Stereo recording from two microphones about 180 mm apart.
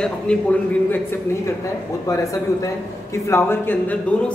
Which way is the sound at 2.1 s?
20° left (ahead or behind).